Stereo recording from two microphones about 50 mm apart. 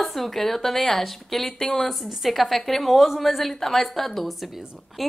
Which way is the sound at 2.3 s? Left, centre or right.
Centre.